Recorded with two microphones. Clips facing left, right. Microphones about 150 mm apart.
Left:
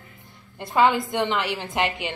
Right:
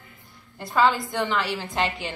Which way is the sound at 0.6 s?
20° left (ahead or behind).